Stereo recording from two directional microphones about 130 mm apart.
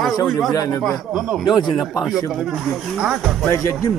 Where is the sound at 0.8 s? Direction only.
Centre (ahead or behind).